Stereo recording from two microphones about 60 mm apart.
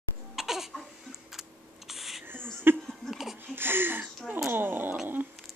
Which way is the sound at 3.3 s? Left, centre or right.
Right.